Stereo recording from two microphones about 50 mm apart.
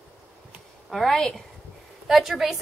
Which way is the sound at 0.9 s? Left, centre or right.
Centre.